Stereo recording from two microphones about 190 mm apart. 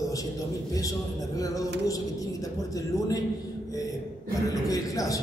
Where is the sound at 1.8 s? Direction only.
20° left (ahead or behind).